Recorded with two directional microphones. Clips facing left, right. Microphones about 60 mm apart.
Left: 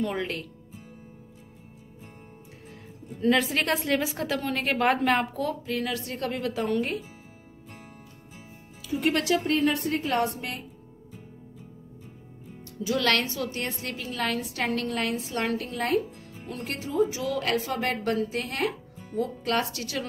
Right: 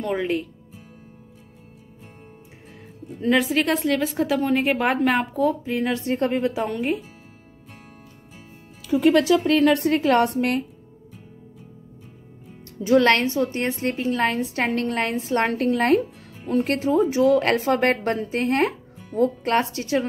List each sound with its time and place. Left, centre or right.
0.0 s a woman's voice: centre
3.2 s a woman's voice: centre
5.8 s speech: right
6.5 s a woman's voice: centre
8.9 s a woman's voice: right
10.2 s a woman's voice: right
12.8 s a woman's voice: right
14.9 s a woman's voice: right